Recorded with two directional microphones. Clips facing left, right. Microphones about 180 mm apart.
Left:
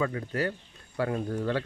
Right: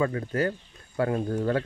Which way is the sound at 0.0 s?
40° right (ahead or behind).